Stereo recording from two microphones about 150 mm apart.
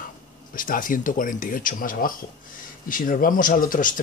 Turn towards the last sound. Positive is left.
turn(degrees=65)  # may be behind; listen again after turning